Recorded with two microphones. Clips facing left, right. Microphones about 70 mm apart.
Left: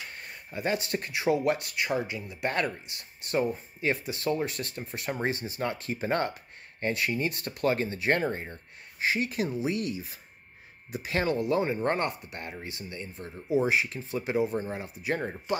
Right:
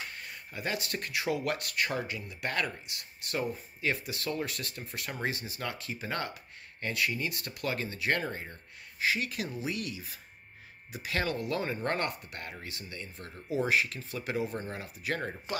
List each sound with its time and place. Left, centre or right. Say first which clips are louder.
0.1 s speech: left 3 dB; left